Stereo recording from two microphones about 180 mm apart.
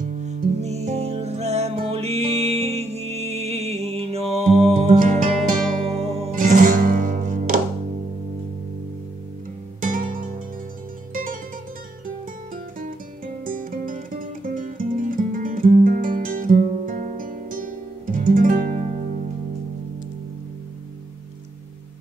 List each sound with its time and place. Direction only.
0.0 s music: 45° right (ahead or behind)
4.9 s music: 50° right (ahead or behind)
5.9 s music: 35° right (ahead or behind)
6.3 s music: 50° right (ahead or behind)
9.8 s music: 50° right (ahead or behind)
13.5 s music: 50° right (ahead or behind)